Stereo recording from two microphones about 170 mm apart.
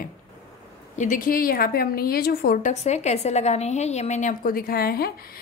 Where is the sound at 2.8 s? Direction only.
40° left (ahead or behind).